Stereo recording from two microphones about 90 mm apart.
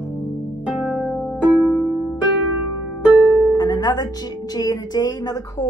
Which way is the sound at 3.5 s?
50° left (ahead or behind).